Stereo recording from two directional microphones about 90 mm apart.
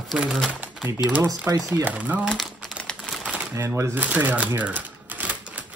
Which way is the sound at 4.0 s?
15° right (ahead or behind).